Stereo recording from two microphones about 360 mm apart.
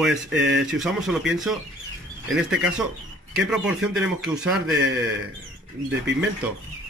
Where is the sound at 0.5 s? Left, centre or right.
Centre.